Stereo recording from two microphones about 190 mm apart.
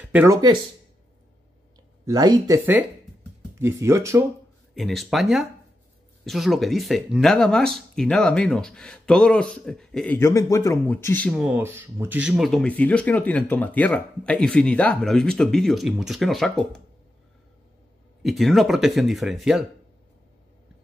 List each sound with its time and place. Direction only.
0.1 s speech: 15° right (ahead or behind)
2.0 s speech: 20° right (ahead or behind)
4.7 s speech: centre (ahead or behind)
11.2 s speech: 5° right (ahead or behind)
18.2 s speech: centre (ahead or behind)